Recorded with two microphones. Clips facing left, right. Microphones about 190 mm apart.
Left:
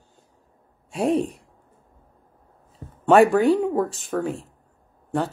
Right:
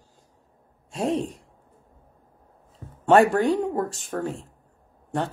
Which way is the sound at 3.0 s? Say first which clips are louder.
Left 2 dB; centre (ahead or behind).